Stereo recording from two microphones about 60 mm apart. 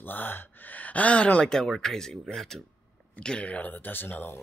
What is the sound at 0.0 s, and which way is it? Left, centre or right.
Speech, left.